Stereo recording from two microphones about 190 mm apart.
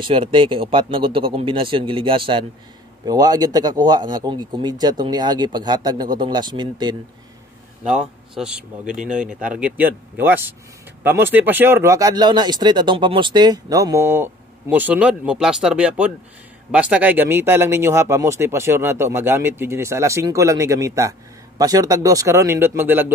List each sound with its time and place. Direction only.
0.0 s speech: 25° right (ahead or behind)
7.8 s speech: 5° right (ahead or behind)